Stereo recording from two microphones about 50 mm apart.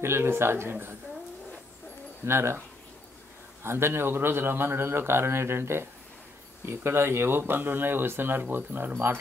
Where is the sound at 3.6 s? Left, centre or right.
Right.